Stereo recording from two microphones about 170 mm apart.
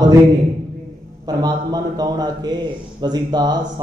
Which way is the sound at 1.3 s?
20° right (ahead or behind).